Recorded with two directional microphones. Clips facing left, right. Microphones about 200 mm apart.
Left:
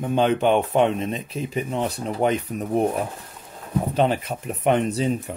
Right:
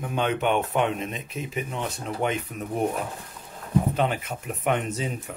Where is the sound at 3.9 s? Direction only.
35° left (ahead or behind).